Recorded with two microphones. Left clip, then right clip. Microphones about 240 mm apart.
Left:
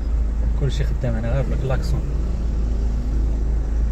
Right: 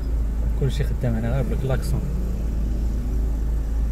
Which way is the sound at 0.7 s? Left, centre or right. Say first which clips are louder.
Left 3 dB; right.